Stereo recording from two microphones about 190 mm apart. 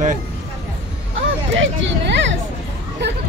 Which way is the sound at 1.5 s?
70° right (ahead or behind).